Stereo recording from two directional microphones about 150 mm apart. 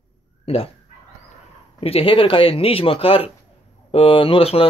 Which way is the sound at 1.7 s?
40° left (ahead or behind).